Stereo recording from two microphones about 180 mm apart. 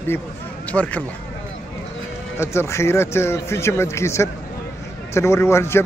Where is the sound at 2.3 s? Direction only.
15° left (ahead or behind).